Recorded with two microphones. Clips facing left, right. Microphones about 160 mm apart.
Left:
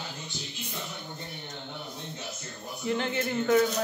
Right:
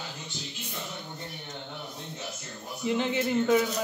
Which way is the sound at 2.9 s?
15° right (ahead or behind).